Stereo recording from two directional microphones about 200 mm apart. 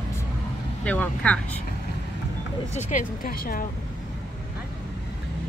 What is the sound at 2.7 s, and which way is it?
Speech, 40° left (ahead or behind).